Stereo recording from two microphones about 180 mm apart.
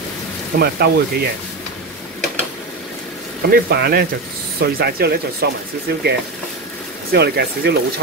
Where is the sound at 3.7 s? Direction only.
65° right (ahead or behind).